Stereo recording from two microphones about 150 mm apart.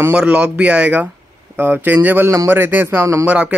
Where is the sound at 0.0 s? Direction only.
10° right (ahead or behind).